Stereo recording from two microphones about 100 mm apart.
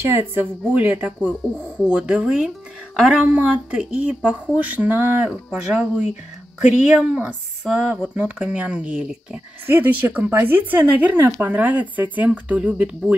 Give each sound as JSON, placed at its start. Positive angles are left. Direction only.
{"t": 0.0, "sound": "a woman's voice", "side_deg": -25}